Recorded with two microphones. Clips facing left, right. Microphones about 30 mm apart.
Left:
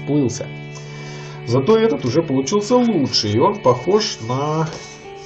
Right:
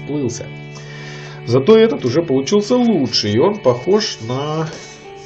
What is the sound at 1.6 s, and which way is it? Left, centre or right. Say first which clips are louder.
Speech: right 5 dB; right.